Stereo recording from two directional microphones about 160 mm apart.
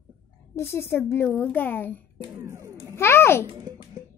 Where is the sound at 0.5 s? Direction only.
15° left (ahead or behind).